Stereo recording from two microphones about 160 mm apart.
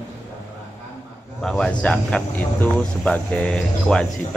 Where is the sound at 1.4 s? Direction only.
5° left (ahead or behind).